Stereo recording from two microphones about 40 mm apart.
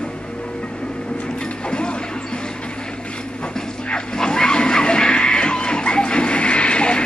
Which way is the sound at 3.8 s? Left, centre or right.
Left.